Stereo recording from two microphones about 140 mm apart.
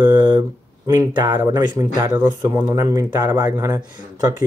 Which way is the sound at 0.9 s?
25° right (ahead or behind).